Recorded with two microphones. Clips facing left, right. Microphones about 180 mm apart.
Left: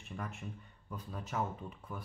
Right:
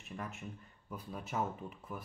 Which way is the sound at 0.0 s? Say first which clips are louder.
Even; centre (ahead or behind).